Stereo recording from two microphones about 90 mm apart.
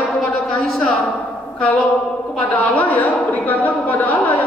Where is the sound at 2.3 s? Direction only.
15° left (ahead or behind).